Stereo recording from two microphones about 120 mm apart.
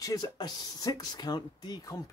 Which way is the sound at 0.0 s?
30° left (ahead or behind).